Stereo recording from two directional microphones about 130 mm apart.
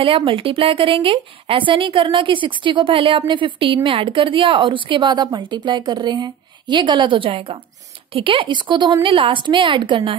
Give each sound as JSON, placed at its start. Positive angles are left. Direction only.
{"t": 0.0, "sound": "a woman's voice", "side_deg": -40}